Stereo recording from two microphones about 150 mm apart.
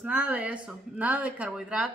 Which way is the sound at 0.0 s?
10° right (ahead or behind).